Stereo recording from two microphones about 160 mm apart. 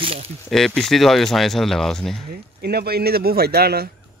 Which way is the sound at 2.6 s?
80° right.